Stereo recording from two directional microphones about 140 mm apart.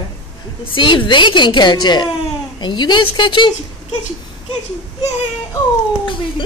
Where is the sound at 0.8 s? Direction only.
35° left (ahead or behind).